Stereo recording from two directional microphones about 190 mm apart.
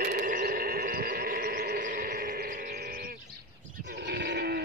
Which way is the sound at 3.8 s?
60° right (ahead or behind).